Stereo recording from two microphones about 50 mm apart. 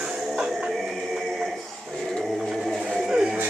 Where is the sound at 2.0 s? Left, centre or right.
Centre.